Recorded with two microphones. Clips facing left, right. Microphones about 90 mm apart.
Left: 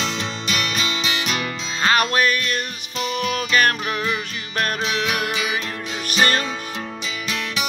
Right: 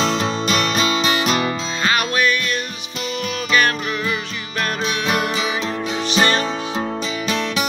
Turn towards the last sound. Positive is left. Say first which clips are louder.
# right 2 dB
turn(degrees=-30)  # may be behind; listen again after turning